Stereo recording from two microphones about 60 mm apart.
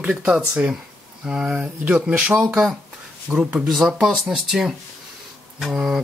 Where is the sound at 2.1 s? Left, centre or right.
Right.